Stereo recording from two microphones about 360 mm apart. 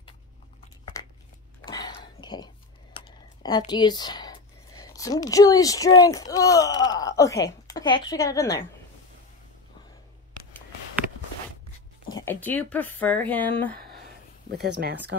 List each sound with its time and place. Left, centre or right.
1.7 s whispering: centre
3.4 s speech: centre
12.1 s speech: centre
14.7 s speech: right